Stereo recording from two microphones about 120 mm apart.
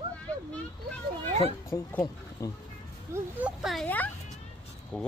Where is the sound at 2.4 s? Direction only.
30° left (ahead or behind).